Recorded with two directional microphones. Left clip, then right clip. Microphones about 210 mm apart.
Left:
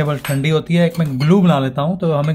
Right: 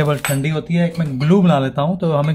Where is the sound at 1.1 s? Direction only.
5° left (ahead or behind).